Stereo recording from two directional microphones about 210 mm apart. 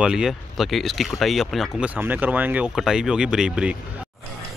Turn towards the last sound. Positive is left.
turn(degrees=-5)  # may be behind; listen again after turning